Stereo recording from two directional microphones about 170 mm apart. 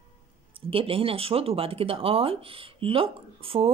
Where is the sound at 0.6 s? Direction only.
30° right (ahead or behind).